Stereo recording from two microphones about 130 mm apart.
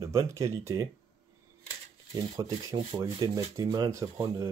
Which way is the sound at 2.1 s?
30° right (ahead or behind).